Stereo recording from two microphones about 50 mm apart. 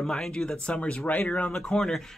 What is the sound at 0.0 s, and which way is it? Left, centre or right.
Speech, centre.